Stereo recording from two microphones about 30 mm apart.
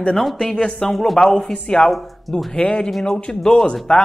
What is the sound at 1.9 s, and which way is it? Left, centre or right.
Speech, centre.